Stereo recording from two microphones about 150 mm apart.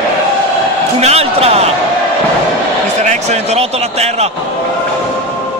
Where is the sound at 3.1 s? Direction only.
50° right (ahead or behind).